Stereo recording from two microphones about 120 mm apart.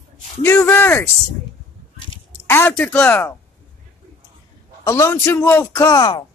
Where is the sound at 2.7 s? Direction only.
10° left (ahead or behind).